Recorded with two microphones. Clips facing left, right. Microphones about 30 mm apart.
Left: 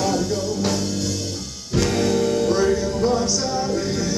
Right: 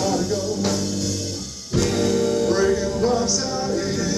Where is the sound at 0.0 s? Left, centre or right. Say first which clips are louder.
Even; centre.